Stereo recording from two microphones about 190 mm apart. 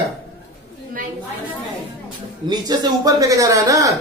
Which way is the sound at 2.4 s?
20° right (ahead or behind).